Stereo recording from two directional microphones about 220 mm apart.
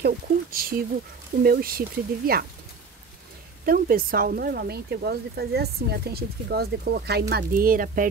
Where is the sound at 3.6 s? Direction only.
40° right (ahead or behind).